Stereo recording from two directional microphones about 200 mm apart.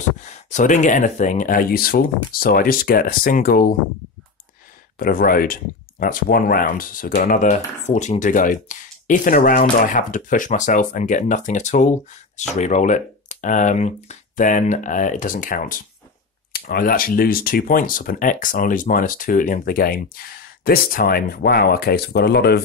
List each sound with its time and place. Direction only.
0.2 s speech: 35° left (ahead or behind)
4.9 s speech: 45° left (ahead or behind)